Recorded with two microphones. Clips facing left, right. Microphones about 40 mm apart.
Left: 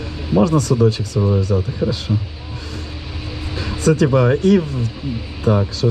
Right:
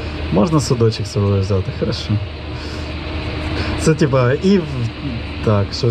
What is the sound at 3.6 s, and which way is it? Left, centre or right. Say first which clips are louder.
Vehicle: even; right.